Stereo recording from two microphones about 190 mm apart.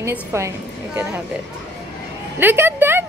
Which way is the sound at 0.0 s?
15° right (ahead or behind).